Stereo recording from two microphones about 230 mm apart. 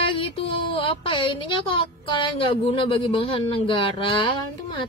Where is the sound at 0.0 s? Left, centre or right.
Left.